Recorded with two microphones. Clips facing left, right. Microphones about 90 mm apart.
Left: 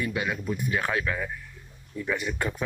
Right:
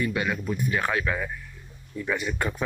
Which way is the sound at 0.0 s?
5° left (ahead or behind).